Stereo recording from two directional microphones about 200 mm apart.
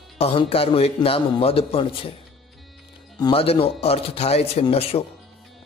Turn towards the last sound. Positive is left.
turn(degrees=30)  # may be behind; listen again after turning